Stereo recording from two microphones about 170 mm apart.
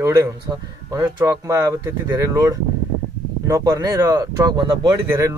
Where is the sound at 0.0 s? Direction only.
15° right (ahead or behind).